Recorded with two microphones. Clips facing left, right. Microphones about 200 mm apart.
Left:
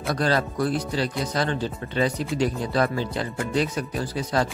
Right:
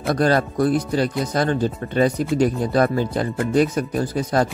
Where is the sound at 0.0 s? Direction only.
50° right (ahead or behind).